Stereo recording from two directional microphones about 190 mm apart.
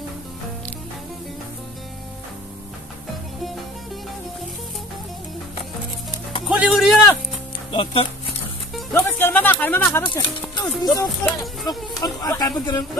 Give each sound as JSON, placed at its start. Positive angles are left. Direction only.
{"t": 6.4, "sound": "speech", "side_deg": -5}
{"t": 7.7, "sound": "speech", "side_deg": 30}
{"t": 8.9, "sound": "speech", "side_deg": 10}
{"t": 10.0, "sound": "speech", "side_deg": 20}